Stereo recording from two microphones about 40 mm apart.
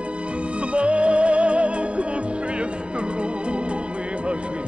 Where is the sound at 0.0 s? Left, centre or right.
Right.